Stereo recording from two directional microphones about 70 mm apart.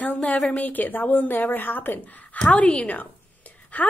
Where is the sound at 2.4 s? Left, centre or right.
Centre.